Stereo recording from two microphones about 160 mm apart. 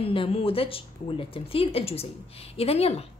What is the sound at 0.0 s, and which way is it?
A woman's voice, 35° left (ahead or behind).